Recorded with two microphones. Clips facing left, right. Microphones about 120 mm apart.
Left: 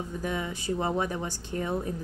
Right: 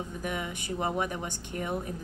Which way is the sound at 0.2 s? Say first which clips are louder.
Left 3 dB; 25° left (ahead or behind).